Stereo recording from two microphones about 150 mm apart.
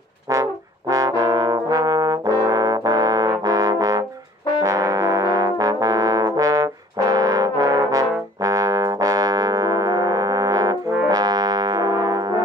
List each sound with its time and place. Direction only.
0.3 s brass instrument: 20° right (ahead or behind)